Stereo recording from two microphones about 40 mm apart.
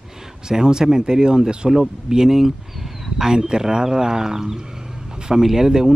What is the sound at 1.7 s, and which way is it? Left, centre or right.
Speech, centre.